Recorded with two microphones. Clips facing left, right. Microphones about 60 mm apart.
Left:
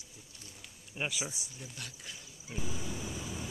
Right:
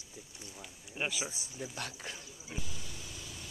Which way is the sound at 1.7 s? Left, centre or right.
Right.